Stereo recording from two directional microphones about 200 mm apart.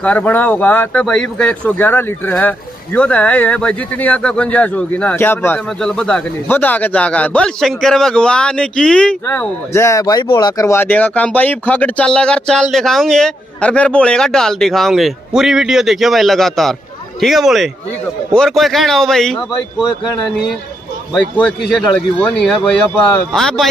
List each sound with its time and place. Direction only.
0.0 s speech: 5° left (ahead or behind)
19.8 s speech: 20° left (ahead or behind)
21.1 s speech: centre (ahead or behind)